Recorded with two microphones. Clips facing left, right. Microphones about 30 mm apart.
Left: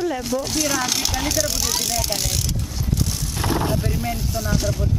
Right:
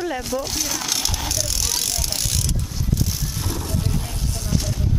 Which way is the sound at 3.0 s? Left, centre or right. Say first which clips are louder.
Left 1 dB; centre.